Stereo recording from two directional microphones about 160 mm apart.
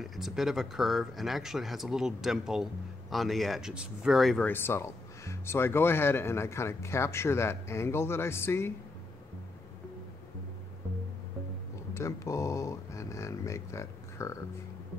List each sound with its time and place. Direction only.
0.0 s speech: centre (ahead or behind)
4.5 s speech: 15° left (ahead or behind)
11.9 s speech: 20° left (ahead or behind)